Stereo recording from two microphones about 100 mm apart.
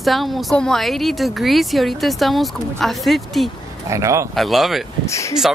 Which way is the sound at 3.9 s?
30° right (ahead or behind).